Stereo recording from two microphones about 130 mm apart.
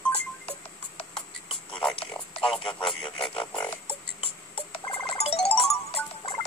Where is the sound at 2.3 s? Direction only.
45° left (ahead or behind).